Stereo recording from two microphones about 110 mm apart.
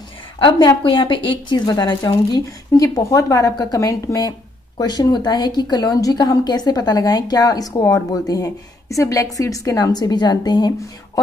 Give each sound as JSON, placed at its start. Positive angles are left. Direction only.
{"t": 0.4, "sound": "a woman's voice", "side_deg": 45}